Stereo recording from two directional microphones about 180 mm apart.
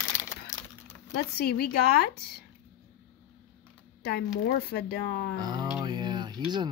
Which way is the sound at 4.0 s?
60° left (ahead or behind).